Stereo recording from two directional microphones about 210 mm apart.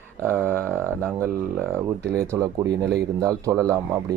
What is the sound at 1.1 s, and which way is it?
Speech, 10° right (ahead or behind).